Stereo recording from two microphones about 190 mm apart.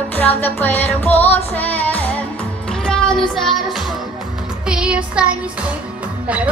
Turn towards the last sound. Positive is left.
turn(degrees=-5)  # may be behind; listen again after turning